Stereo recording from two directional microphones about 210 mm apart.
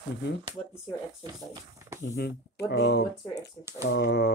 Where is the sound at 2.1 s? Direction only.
50° left (ahead or behind).